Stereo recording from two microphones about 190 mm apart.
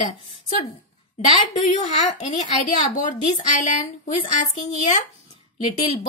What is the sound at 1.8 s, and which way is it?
Speech, 40° left (ahead or behind).